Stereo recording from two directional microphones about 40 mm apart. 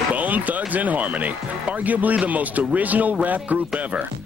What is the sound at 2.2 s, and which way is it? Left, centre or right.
Speech, right.